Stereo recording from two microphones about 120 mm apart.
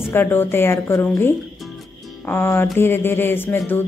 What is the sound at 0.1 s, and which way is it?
A woman's voice, 15° left (ahead or behind).